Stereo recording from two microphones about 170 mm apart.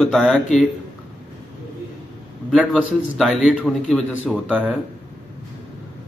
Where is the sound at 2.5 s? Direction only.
5° right (ahead or behind).